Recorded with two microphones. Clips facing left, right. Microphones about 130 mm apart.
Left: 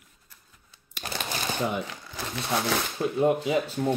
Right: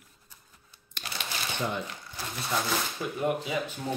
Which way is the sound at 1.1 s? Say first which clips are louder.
Left 5 dB; 40° left (ahead or behind).